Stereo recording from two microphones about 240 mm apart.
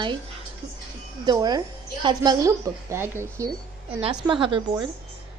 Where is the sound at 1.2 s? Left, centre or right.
Centre.